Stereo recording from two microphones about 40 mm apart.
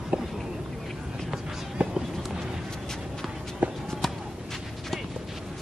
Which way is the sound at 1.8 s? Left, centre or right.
Right.